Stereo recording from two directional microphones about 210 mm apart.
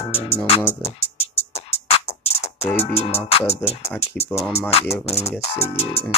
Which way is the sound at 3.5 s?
30° left (ahead or behind).